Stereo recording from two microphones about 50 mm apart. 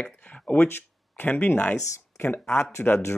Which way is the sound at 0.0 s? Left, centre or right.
Left.